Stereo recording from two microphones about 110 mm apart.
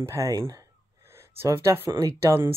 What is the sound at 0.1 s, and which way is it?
Speech, 30° right (ahead or behind).